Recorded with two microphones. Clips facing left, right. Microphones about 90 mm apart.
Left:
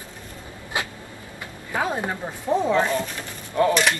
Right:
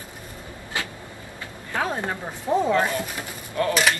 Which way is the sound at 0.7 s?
20° left (ahead or behind).